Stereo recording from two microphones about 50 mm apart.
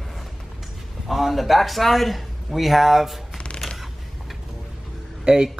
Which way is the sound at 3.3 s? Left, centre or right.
Left.